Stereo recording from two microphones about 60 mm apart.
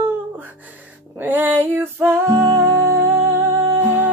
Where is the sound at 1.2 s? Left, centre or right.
Right.